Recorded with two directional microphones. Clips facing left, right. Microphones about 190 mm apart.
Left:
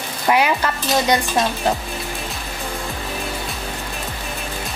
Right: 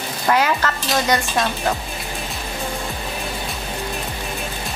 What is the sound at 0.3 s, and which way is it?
Dishes, 15° left (ahead or behind).